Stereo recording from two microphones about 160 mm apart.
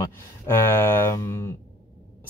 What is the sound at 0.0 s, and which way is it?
Speech, 15° left (ahead or behind).